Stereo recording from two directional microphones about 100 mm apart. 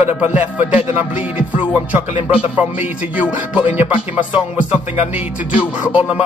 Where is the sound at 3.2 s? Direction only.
15° right (ahead or behind).